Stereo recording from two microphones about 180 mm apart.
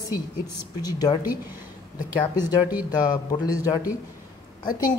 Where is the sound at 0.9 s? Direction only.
20° left (ahead or behind).